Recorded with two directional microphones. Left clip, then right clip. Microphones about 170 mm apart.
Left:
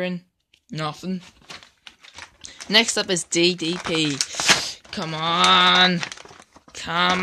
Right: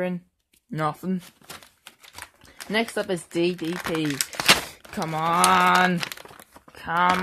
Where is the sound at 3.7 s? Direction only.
25° right (ahead or behind); by 5.8 s 5° right (ahead or behind).